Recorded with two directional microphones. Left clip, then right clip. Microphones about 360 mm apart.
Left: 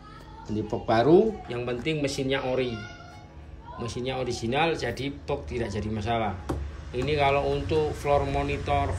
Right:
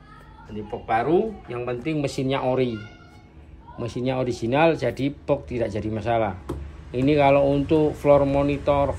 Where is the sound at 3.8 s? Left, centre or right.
Centre.